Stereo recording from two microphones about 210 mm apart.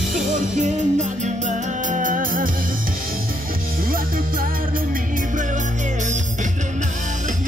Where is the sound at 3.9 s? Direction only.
45° right (ahead or behind).